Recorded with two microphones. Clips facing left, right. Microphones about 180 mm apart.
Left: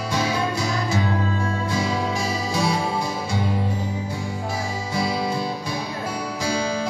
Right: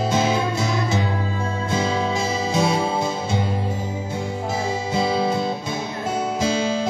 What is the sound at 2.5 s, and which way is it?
Music, 20° right (ahead or behind).